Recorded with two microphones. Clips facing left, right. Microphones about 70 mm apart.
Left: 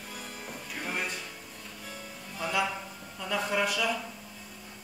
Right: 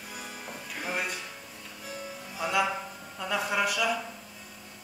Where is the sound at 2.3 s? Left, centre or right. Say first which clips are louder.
Right 2 dB; centre.